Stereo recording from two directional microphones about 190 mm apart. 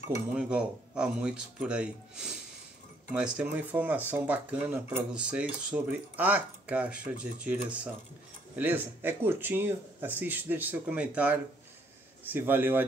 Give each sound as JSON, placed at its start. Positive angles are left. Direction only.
{"t": 0.3, "sound": "speech", "side_deg": -5}